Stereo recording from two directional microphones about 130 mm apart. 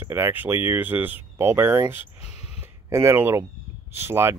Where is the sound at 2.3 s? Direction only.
5° right (ahead or behind).